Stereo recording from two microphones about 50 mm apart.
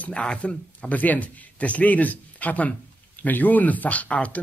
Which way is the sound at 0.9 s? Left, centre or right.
Left.